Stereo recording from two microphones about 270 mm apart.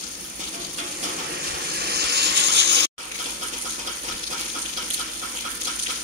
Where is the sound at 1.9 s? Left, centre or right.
Right.